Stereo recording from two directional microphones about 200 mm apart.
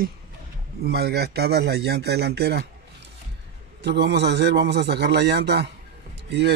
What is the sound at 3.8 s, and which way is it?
Speech, 60° right (ahead or behind).